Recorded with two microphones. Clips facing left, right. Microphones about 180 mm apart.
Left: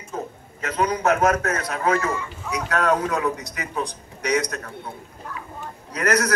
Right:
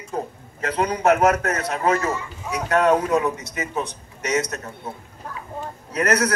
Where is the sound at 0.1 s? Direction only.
30° right (ahead or behind).